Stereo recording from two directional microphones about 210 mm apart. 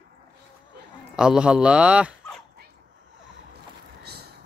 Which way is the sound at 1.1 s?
5° right (ahead or behind).